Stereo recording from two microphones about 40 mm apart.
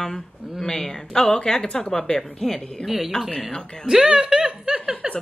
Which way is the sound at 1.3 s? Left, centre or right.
Centre.